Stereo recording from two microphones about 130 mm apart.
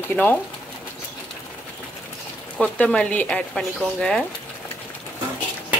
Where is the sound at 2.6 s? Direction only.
10° left (ahead or behind).